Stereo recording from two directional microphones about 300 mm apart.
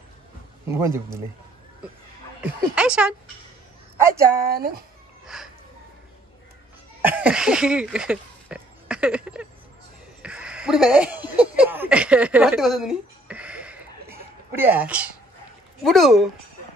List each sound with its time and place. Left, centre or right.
0.7 s a man's voice: centre
2.4 s a woman's voice: centre
4.5 s speech: right
5.2 s a sound: centre
7.0 s a woman's voice: centre